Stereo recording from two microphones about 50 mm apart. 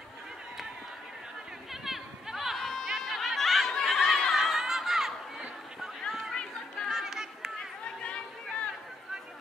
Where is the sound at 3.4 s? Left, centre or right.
Centre.